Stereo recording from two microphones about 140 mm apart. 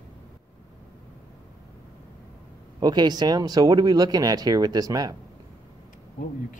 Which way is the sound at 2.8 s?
30° right (ahead or behind).